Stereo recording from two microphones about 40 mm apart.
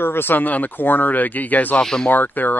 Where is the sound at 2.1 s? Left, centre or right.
Left.